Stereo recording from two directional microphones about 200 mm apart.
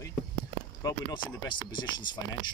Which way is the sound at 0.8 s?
20° left (ahead or behind).